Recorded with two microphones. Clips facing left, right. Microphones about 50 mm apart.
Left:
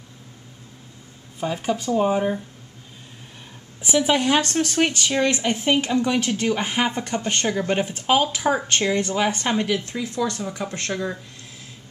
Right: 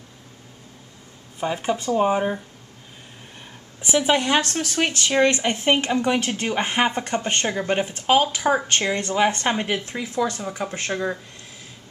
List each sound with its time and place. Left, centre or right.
1.4 s speech: centre
4.0 s speech: centre
5.1 s speech: centre
6.6 s speech: centre
6.9 s speech: right
7.4 s speech: centre
8.7 s speech: centre